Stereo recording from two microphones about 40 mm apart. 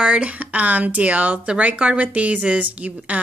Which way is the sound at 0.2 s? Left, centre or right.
Right.